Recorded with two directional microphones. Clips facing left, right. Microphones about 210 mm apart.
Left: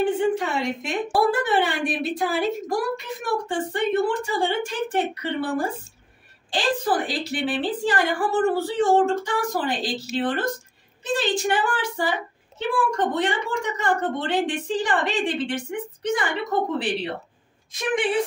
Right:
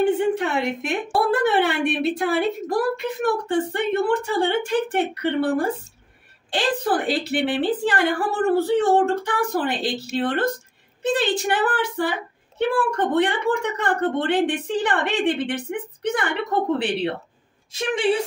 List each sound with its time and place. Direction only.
0.2 s a woman's voice: 60° right (ahead or behind)